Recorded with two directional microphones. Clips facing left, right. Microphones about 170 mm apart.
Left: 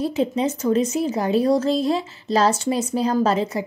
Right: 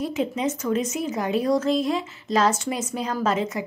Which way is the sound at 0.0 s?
30° left (ahead or behind).